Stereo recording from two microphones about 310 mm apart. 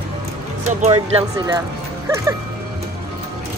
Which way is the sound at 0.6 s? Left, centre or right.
Centre.